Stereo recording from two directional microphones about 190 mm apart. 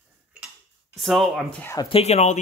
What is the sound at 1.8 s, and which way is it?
Speech, 30° left (ahead or behind).